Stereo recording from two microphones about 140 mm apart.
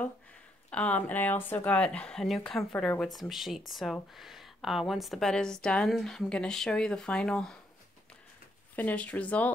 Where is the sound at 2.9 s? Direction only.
5° left (ahead or behind).